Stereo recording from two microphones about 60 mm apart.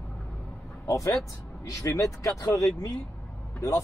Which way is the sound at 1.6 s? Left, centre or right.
Left.